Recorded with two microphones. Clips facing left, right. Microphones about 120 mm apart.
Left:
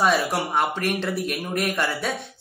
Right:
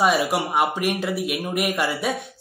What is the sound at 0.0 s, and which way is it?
A man's voice, centre (ahead or behind).